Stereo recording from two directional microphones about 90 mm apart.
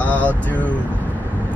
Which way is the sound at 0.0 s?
15° left (ahead or behind).